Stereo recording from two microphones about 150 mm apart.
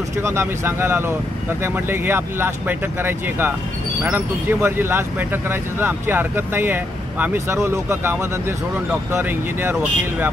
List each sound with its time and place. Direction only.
0.2 s speech: 15° right (ahead or behind)